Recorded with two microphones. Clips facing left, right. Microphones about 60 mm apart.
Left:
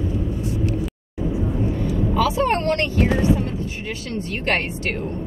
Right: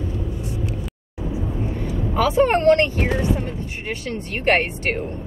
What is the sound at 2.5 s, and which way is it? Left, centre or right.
A woman's voice, right.